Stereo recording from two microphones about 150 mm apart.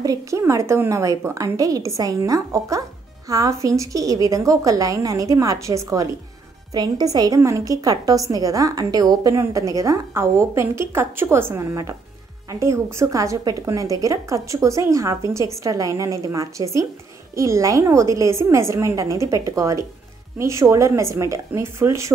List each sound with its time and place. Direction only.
0.0 s a woman's voice: 20° right (ahead or behind)